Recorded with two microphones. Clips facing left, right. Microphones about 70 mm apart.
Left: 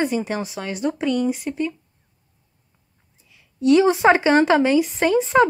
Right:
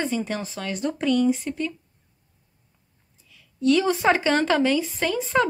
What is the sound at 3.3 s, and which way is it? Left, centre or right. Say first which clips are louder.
Speech: left 4 dB; left.